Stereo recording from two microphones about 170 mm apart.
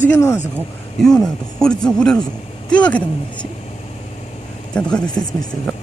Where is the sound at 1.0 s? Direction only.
Centre (ahead or behind).